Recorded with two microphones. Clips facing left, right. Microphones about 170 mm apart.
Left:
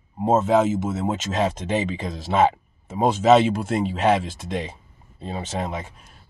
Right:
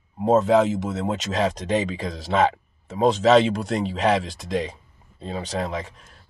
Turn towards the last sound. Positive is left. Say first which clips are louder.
# right 1 dB
turn(degrees=5)  # may be behind; listen again after turning